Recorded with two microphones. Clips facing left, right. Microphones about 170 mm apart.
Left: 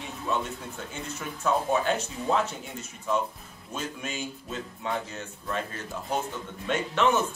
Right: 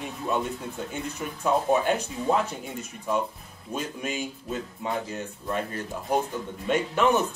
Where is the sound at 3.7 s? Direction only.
10° right (ahead or behind).